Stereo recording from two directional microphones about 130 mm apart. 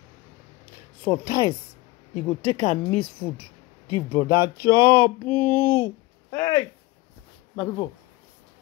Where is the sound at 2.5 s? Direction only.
55° left (ahead or behind).